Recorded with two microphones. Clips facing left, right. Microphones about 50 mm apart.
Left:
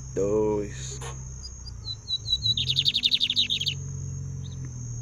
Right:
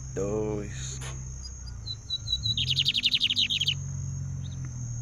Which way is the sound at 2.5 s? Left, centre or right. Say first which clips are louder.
Right 2 dB; right.